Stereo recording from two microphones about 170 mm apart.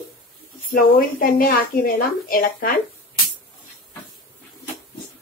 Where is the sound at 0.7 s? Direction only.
60° left (ahead or behind).